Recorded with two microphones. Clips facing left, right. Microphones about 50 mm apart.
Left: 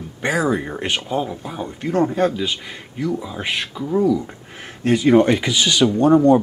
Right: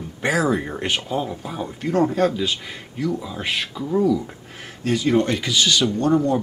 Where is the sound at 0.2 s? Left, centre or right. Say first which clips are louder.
Left 1 dB; centre.